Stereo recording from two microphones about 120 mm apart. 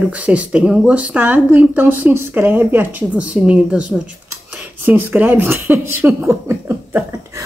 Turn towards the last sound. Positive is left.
turn(degrees=-25)  # may be behind; listen again after turning